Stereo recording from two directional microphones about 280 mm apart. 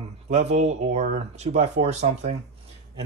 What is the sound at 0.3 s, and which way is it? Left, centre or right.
Speech, right.